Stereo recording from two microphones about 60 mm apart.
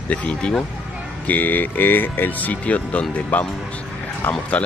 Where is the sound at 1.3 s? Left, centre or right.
Left.